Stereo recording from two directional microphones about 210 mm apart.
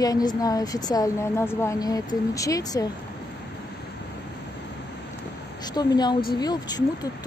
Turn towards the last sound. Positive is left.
turn(degrees=20)  # may be behind; listen again after turning